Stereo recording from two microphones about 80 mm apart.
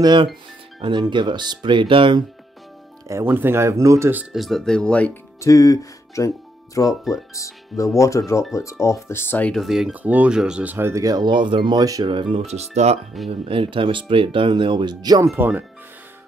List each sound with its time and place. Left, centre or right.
0.0 s speech: right
0.7 s speech: right
3.3 s speech: right
4.3 s speech: centre
5.4 s speech: left
9.6 s speech: centre
9.9 s speech: centre
10.8 s speech: right
11.1 s speech: right
13.2 s speech: centre
13.6 s speech: right
15.3 s speech: right